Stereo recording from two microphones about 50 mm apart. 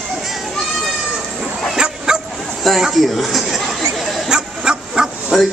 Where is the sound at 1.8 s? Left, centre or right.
Centre.